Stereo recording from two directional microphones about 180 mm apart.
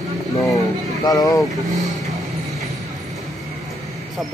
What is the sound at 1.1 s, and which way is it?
Speech, 20° left (ahead or behind).